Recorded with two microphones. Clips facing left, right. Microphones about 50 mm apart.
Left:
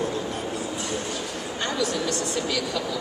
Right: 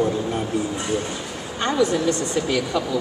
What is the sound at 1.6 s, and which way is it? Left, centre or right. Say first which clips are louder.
Speech: right 7 dB; right.